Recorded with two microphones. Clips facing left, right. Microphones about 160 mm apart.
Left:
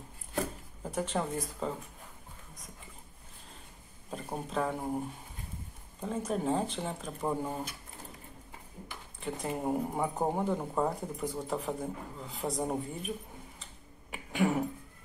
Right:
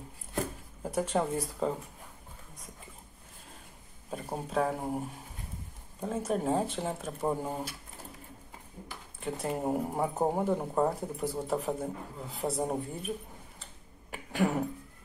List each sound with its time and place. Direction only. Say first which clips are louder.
1.1 s speech: right 3 dB; 10° right (ahead or behind)
4.1 s speech: right 2 dB; 10° right (ahead or behind)
6.0 s speech: right 1 dB; 5° right (ahead or behind)
9.2 s speech: right 2 dB; 5° right (ahead or behind)
14.1 s a sound: even; centre (ahead or behind)